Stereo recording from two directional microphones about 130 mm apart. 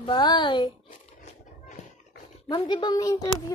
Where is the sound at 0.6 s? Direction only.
60° left (ahead or behind).